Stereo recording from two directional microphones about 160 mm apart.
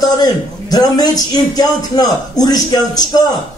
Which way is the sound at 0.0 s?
25° left (ahead or behind).